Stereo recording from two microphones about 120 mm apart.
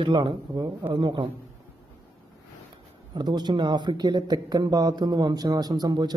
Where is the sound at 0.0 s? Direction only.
40° right (ahead or behind).